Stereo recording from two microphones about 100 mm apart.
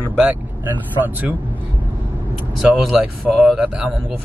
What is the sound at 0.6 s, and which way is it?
Speech, 20° right (ahead or behind).